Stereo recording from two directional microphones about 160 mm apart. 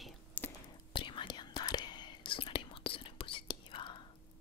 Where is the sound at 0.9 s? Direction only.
30° left (ahead or behind).